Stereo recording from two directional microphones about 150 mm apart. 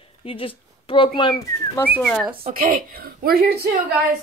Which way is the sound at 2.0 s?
5° left (ahead or behind).